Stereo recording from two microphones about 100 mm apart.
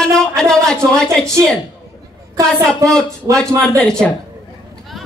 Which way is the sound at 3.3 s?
30° right (ahead or behind).